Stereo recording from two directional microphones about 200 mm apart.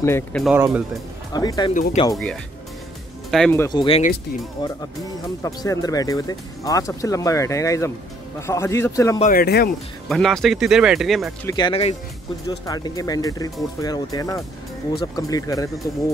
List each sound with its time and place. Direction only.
0.0 s speech: 10° left (ahead or behind)
0.6 s speech: 10° right (ahead or behind)
1.3 s speech: 20° left (ahead or behind)
1.7 s speech: 40° left (ahead or behind)
3.3 s speech: centre (ahead or behind)
3.5 s speech: 20° left (ahead or behind)
9.2 s speech: 45° left (ahead or behind)
10.0 s speech: centre (ahead or behind)
11.4 s speech: 20° left (ahead or behind)